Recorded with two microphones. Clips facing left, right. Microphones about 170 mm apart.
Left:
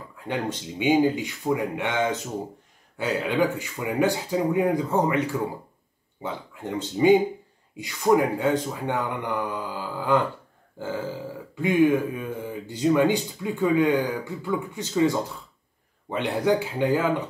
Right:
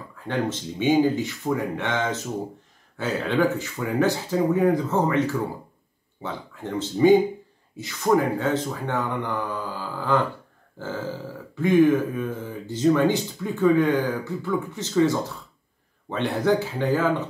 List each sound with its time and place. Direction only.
0.3 s speech: 15° left (ahead or behind)